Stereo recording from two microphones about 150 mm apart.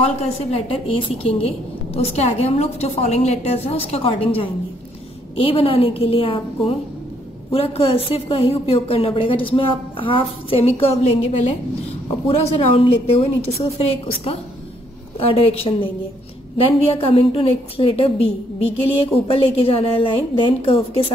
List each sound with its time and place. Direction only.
0.0 s a woman's voice: 40° left (ahead or behind)
15.1 s a woman's voice: 40° left (ahead or behind)